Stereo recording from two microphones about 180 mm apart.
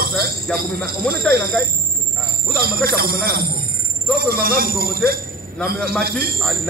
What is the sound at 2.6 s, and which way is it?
A man's voice, 55° right (ahead or behind).